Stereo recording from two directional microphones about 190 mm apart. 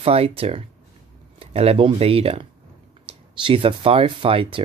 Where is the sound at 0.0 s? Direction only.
30° right (ahead or behind).